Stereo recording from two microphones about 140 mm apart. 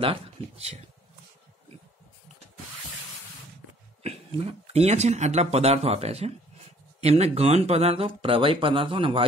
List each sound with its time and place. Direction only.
0.0 s speech: 45° right (ahead or behind)
4.0 s speech: 45° right (ahead or behind)